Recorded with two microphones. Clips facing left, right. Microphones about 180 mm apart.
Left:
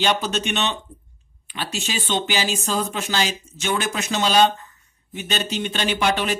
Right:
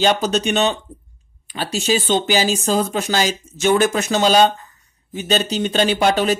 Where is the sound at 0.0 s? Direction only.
40° right (ahead or behind).